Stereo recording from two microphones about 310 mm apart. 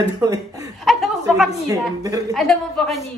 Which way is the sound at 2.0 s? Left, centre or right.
Centre.